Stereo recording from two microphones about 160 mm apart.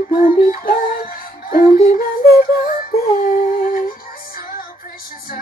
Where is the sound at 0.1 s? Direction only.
60° left (ahead or behind).